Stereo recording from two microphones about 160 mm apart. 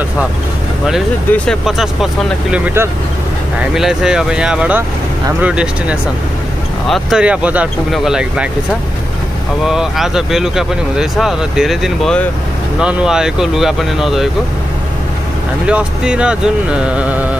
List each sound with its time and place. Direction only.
1.3 s speech: 5° left (ahead or behind)
2.5 s speech: 10° right (ahead or behind)
9.7 s speech: 5° right (ahead or behind)
15.6 s speech: 5° right (ahead or behind)